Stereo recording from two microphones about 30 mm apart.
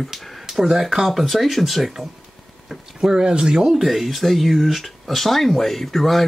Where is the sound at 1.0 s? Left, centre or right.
Centre.